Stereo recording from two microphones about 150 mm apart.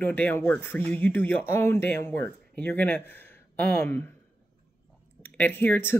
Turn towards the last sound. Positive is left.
turn(degrees=15)  # may be behind; listen again after turning